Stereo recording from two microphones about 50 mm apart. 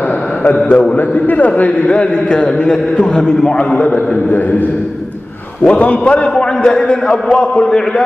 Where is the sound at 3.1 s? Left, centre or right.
Centre.